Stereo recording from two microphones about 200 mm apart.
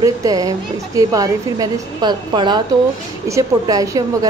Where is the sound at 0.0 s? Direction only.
20° right (ahead or behind).